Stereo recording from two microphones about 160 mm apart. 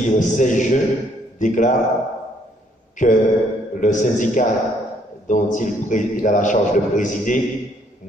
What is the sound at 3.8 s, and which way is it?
A man's voice, 50° left (ahead or behind).